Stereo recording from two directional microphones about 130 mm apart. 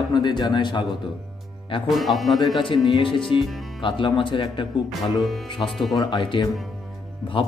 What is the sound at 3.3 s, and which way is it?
Speech, 40° left (ahead or behind).